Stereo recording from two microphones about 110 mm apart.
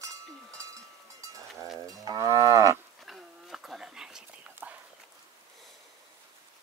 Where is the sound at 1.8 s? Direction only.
35° right (ahead or behind).